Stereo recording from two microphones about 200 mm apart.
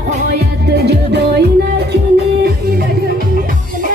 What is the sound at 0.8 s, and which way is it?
Music, 55° right (ahead or behind).